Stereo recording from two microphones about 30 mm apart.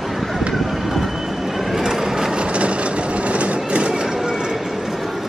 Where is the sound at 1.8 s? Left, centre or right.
Centre.